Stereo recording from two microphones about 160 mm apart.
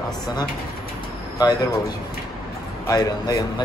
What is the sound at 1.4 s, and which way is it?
A man's voice, 25° left (ahead or behind).